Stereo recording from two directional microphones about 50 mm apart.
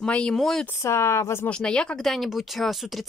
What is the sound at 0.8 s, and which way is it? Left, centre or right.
Speech, left.